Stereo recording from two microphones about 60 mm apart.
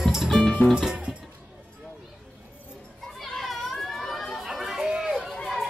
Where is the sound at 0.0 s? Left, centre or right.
Centre.